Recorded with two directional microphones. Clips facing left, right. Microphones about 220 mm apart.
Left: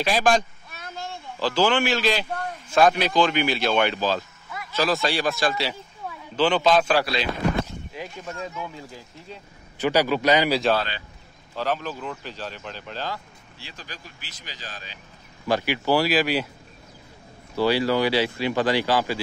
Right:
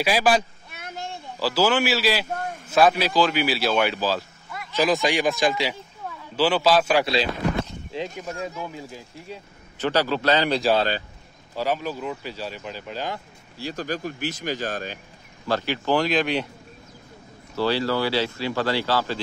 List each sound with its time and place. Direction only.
0.0 s speech: 5° right (ahead or behind)
0.7 s child singing: 20° right (ahead or behind)
1.4 s speech: 5° right (ahead or behind)
4.7 s speech: 15° right (ahead or behind)
8.2 s speech: 15° right (ahead or behind)
9.8 s speech: 10° left (ahead or behind)
11.5 s speech: 10° right (ahead or behind)
13.6 s speech: 45° right (ahead or behind)
15.4 s speech: 15° left (ahead or behind)
17.6 s speech: 15° left (ahead or behind)